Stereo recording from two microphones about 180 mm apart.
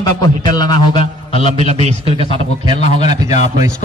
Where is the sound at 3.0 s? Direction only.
20° right (ahead or behind).